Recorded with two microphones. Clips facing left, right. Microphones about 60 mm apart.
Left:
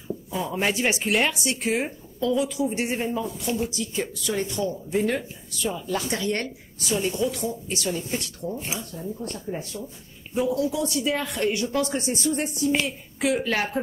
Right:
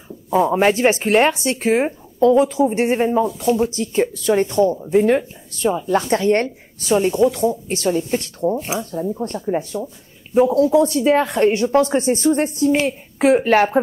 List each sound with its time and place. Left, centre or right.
0.3 s speech: right